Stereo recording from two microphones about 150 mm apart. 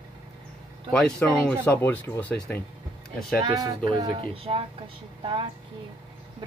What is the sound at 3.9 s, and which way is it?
Speech, 35° right (ahead or behind).